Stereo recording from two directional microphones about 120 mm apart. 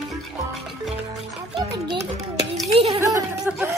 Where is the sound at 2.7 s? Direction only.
50° right (ahead or behind).